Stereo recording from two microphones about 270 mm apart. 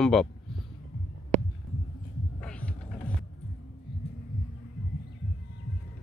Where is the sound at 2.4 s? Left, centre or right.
Centre.